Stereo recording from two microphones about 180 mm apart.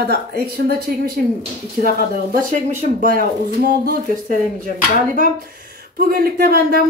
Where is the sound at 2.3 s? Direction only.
50° right (ahead or behind).